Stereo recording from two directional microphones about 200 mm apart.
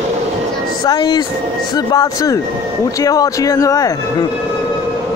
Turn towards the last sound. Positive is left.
turn(degrees=15)  # may be behind; listen again after turning